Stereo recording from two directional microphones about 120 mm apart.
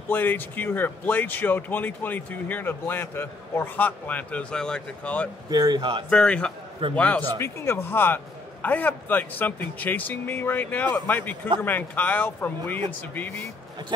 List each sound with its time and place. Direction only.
0.1 s speech: 15° left (ahead or behind)
5.5 s a man's voice: 35° right (ahead or behind)
6.0 s speech: 10° left (ahead or behind)
7.3 s speech: 20° left (ahead or behind)